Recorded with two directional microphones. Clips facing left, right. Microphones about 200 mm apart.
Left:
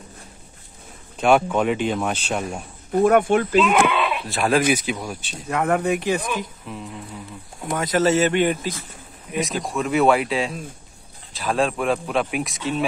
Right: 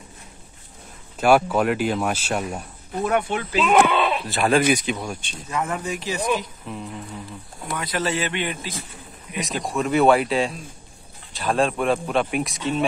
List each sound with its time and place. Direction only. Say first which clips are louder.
1.2 s speech: even; 5° right (ahead or behind)
2.9 s speech: left 7 dB; 50° left (ahead or behind)
3.6 s sheep: right 1 dB; 35° right (ahead or behind)
4.3 s speech: even; centre (ahead or behind)
5.5 s speech: left 6 dB; 60° left (ahead or behind)
6.7 s speech: right 1 dB; centre (ahead or behind)
7.7 s speech: left 7 dB; 45° left (ahead or behind)
9.4 s speech: left 1 dB; centre (ahead or behind)